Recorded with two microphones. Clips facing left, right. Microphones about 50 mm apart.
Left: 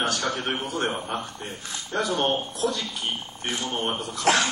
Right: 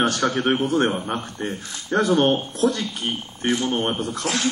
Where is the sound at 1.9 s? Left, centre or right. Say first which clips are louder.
Right 6 dB; right.